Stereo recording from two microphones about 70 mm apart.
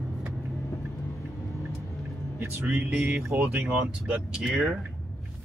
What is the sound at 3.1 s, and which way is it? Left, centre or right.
Speech, right.